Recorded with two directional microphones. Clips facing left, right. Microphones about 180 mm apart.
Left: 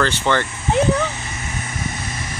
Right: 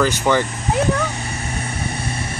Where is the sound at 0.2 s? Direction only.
10° right (ahead or behind).